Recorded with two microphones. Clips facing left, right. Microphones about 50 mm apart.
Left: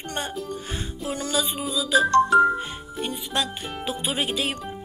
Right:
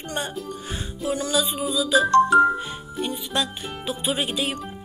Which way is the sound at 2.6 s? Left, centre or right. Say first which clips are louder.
Right 2 dB; left.